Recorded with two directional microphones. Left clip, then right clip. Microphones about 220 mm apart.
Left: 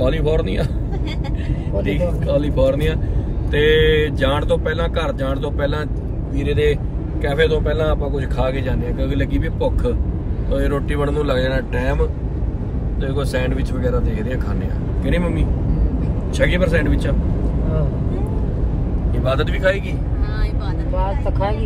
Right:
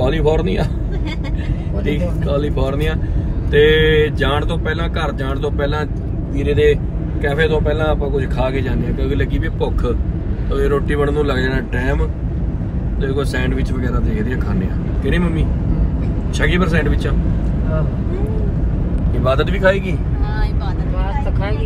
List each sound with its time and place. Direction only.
0.0 s speech: centre (ahead or behind)
2.0 s speech: 10° right (ahead or behind)
10.9 s speech: 5° left (ahead or behind)
15.0 s speech: 10° right (ahead or behind)
19.2 s speech: 10° right (ahead or behind)